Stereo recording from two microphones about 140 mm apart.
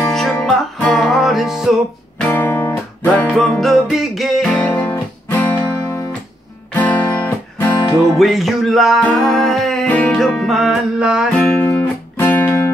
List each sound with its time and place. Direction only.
0.1 s music: 5° left (ahead or behind)
2.2 s music: 15° left (ahead or behind)
8.2 s music: centre (ahead or behind)
11.3 s music: 5° left (ahead or behind)